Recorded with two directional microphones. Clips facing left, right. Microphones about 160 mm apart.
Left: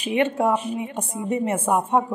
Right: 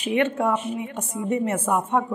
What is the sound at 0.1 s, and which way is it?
Speech, 30° left (ahead or behind).